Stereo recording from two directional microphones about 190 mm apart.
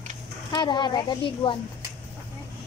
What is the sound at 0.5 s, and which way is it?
A woman's voice, 25° left (ahead or behind).